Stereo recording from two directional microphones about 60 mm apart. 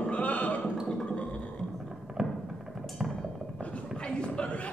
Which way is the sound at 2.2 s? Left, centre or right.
Centre.